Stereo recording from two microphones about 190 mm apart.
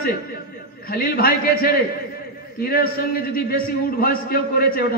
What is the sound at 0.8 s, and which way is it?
A man's voice, 50° left (ahead or behind).